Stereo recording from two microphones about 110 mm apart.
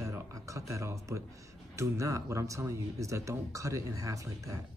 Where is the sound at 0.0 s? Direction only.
30° right (ahead or behind).